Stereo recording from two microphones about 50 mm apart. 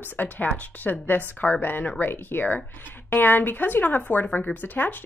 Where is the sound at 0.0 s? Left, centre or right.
Left.